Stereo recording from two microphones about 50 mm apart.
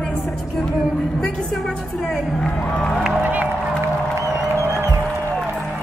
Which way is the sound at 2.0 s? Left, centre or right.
Centre.